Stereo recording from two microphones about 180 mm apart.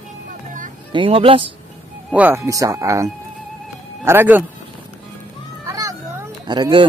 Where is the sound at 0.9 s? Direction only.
30° right (ahead or behind).